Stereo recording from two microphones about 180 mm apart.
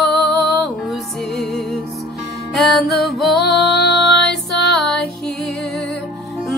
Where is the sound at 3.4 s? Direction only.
65° left (ahead or behind).